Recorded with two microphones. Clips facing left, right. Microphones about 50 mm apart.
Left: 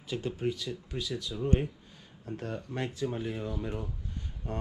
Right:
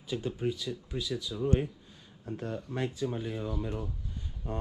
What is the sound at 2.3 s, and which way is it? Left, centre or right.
Speech, left.